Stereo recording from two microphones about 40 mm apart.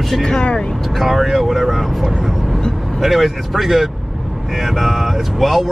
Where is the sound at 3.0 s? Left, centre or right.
Centre.